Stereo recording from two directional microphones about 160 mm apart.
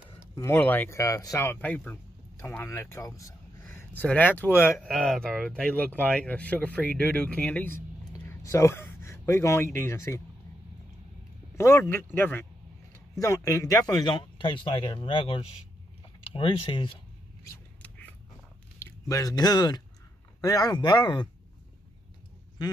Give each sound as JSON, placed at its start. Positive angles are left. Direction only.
{"t": 0.6, "sound": "speech", "side_deg": 10}
{"t": 3.7, "sound": "speech", "side_deg": 10}
{"t": 4.7, "sound": "speech", "side_deg": 0}
{"t": 11.5, "sound": "speech", "side_deg": 15}
{"t": 17.8, "sound": "creak", "side_deg": 10}
{"t": 18.8, "sound": "speech", "side_deg": 20}